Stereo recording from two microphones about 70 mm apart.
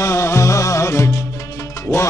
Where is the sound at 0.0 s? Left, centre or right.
Left.